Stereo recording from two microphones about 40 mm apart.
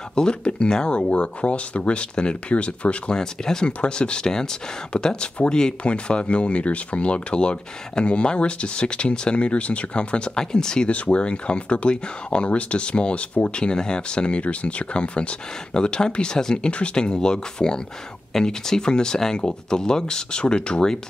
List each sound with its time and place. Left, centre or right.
0.1 s speech: left
3.2 s speech: centre
10.9 s speech: left
13.6 s speech: left